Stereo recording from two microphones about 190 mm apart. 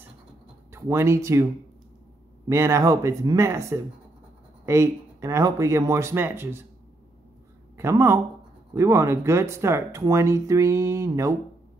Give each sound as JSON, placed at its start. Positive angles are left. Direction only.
{"t": 0.7, "sound": "speech", "side_deg": -15}
{"t": 7.7, "sound": "speech", "side_deg": -15}